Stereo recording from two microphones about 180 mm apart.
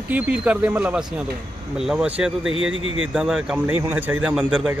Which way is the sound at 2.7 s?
90° right.